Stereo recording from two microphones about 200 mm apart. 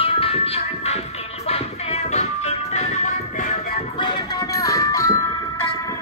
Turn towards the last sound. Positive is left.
turn(degrees=15)  # may be behind; listen again after turning